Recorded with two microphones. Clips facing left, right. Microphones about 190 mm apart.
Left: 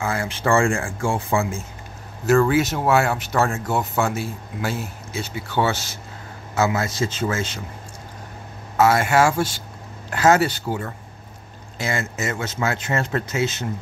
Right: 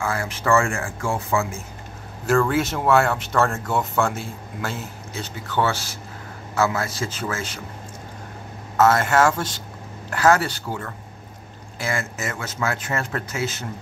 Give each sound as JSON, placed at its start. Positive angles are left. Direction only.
{"t": 0.0, "sound": "speech", "side_deg": 25}
{"t": 2.2, "sound": "speech", "side_deg": 5}
{"t": 8.7, "sound": "speech", "side_deg": 10}
{"t": 10.0, "sound": "speech", "side_deg": 25}